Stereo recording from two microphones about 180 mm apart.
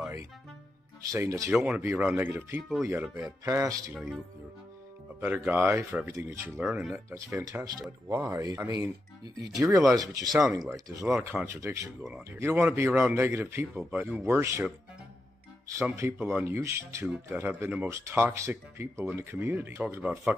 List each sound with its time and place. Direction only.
1.1 s speech: 20° right (ahead or behind)
1.5 s speech: 5° right (ahead or behind)
5.2 s speech: 10° right (ahead or behind)
6.5 s speech: centre (ahead or behind)
7.4 s speech: 20° right (ahead or behind)
11.1 s speech: 5° right (ahead or behind)
15.8 s speech: 15° right (ahead or behind)